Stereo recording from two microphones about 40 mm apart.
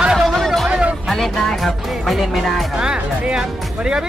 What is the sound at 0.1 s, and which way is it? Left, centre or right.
Music, centre.